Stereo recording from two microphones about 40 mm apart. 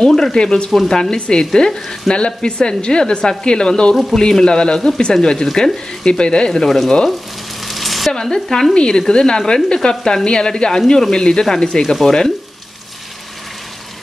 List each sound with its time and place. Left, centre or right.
0.1 s speech: centre
0.4 s speech: centre
6.6 s speech: centre
7.6 s a sound: centre
8.1 s speech: centre
8.7 s speech: left